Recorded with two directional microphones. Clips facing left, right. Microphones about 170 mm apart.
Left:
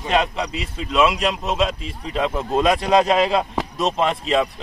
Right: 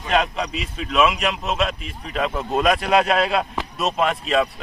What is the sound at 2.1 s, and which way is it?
Speech, 10° left (ahead or behind).